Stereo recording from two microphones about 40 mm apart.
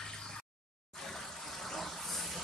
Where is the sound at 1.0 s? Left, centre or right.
Centre.